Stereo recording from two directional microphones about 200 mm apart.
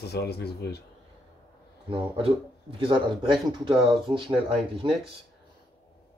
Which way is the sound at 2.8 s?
25° right (ahead or behind).